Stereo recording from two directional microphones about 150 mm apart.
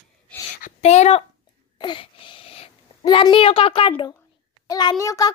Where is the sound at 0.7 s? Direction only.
45° left (ahead or behind).